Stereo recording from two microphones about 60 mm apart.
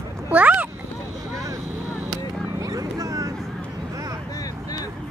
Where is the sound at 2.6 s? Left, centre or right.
Right.